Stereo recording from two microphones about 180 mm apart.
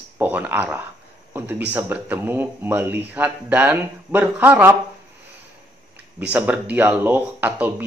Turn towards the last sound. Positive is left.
turn(degrees=-10)  # may be behind; listen again after turning